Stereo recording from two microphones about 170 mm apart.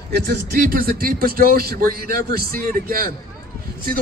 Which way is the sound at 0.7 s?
60° right (ahead or behind).